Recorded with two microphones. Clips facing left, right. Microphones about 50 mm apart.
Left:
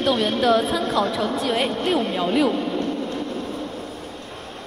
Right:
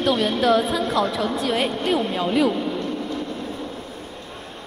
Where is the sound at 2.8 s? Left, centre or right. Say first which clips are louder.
Left 2 dB; left.